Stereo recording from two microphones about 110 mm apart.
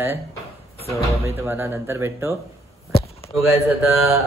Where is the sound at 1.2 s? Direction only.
20° right (ahead or behind).